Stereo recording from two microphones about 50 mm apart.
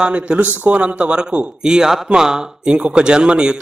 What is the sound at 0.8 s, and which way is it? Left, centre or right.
Speech, right.